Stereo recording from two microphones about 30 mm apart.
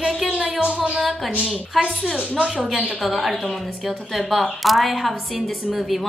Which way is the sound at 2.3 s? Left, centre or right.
Centre.